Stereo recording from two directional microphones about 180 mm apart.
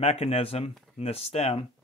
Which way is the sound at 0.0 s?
35° left (ahead or behind).